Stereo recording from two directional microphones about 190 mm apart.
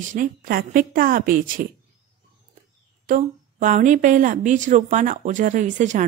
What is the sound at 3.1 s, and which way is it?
A woman's voice, 40° right (ahead or behind).